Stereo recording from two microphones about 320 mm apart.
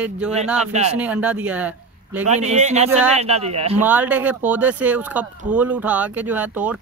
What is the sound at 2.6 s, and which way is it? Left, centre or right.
Speech, right.